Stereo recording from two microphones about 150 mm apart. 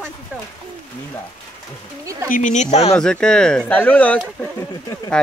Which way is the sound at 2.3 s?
55° left (ahead or behind).